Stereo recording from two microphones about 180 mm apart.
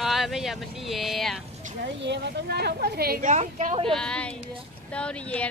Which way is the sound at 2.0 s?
70° right (ahead or behind).